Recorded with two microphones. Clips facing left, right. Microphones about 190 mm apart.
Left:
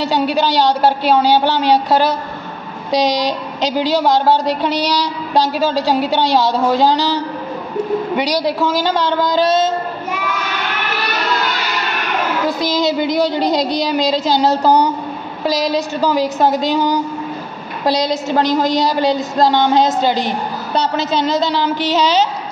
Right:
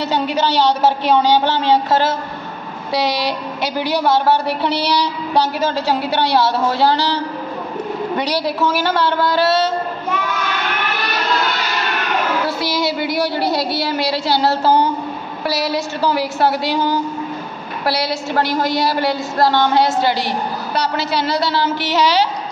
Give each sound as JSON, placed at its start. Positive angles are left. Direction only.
{"t": 0.4, "sound": "a woman's voice", "side_deg": 15}
{"t": 8.2, "sound": "a woman's voice", "side_deg": 15}
{"t": 12.4, "sound": "a woman's voice", "side_deg": 20}